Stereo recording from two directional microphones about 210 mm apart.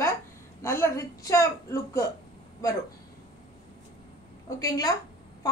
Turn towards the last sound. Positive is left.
turn(degrees=15)  # may be behind; listen again after turning